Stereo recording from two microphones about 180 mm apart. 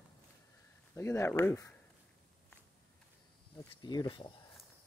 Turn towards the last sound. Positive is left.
turn(degrees=25)  # may be behind; listen again after turning